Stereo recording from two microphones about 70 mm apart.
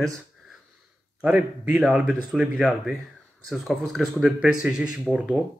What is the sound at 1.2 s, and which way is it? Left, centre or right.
Speech, centre.